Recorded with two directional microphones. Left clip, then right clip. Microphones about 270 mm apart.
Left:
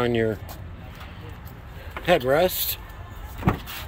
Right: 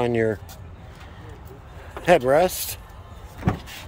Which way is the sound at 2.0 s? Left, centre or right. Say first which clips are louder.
Right 3 dB; centre.